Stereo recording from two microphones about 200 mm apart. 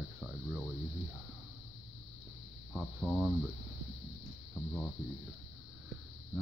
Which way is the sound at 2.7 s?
Centre (ahead or behind).